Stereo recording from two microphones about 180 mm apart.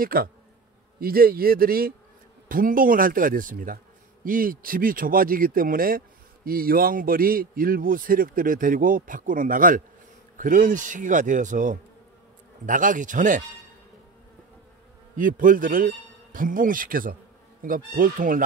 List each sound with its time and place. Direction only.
0.0 s a man's voice: 55° right (ahead or behind)
15.1 s a man's voice: 50° right (ahead or behind)